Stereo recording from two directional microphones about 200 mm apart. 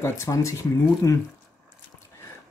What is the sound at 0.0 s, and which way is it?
Speech, 15° left (ahead or behind).